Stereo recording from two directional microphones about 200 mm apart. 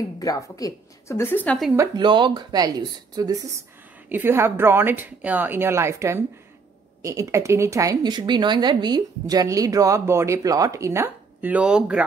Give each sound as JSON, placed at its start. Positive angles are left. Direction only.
{"t": 0.2, "sound": "a woman's voice", "side_deg": 15}
{"t": 1.8, "sound": "speech", "side_deg": -25}